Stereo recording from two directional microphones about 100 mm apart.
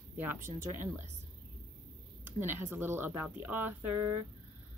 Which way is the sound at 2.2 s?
20° right (ahead or behind).